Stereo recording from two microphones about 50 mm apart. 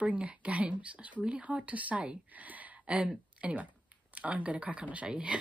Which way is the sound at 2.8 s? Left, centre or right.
Right.